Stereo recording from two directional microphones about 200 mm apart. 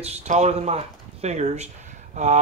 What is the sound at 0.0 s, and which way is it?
Speech, 35° right (ahead or behind).